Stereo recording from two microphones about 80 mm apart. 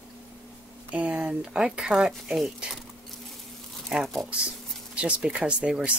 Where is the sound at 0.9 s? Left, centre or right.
Centre.